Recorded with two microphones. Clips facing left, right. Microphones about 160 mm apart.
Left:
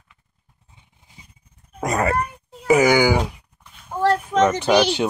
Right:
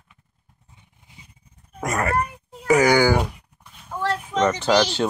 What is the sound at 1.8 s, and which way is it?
Groan, 20° left (ahead or behind).